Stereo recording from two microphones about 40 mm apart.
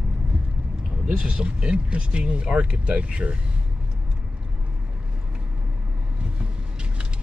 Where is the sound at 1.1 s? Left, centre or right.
Right.